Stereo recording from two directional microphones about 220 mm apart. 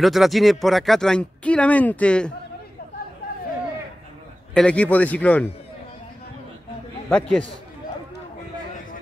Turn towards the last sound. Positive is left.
turn(degrees=5)  # may be behind; listen again after turning